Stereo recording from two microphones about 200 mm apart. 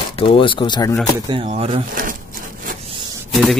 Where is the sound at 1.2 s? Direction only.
25° right (ahead or behind).